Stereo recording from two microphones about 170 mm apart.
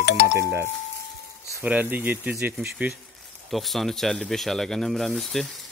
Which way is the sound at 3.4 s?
Centre (ahead or behind).